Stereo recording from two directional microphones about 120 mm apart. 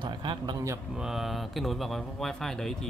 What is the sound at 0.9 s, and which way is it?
Speech, 5° right (ahead or behind).